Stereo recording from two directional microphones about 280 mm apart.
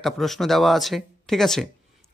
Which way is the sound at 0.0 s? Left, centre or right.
Centre.